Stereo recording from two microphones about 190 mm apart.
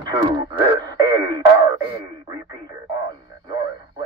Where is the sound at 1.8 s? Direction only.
20° right (ahead or behind).